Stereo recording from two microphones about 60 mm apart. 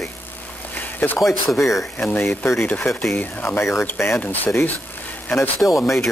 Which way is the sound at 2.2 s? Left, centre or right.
Left.